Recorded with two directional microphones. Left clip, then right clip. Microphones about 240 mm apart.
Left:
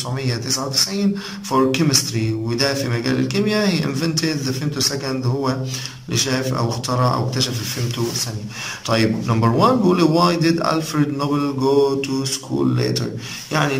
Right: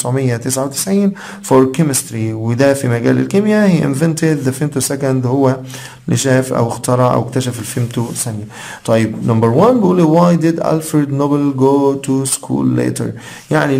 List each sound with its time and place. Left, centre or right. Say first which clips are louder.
0.0 s speech: right 8 dB; right
13.5 s speech: right 6 dB; right